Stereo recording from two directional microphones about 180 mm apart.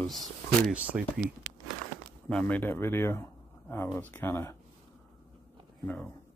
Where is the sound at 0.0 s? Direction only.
Centre (ahead or behind).